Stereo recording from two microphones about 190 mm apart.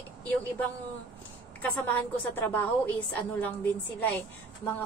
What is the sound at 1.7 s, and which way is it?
Speech, 10° left (ahead or behind).